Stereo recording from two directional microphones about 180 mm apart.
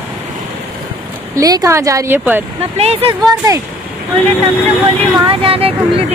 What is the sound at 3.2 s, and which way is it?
Speech, 20° right (ahead or behind).